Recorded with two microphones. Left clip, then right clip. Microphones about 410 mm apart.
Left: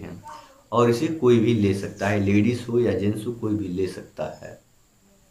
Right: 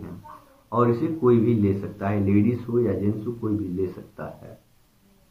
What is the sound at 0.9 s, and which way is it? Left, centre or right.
Speech, centre.